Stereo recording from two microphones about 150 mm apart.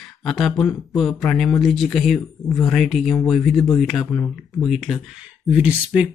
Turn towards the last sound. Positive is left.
turn(degrees=-10)  # may be behind; listen again after turning